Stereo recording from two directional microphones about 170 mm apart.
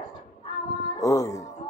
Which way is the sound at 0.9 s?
20° left (ahead or behind).